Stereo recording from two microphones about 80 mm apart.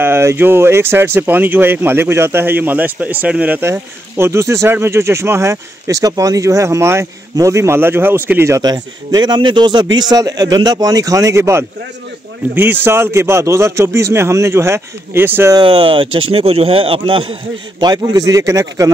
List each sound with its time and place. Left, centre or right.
0.0 s speech: right
3.6 s speech: right
8.5 s a man's voice: right
15.6 s speech: right
17.7 s a man's voice: right
18.2 s a man's voice: right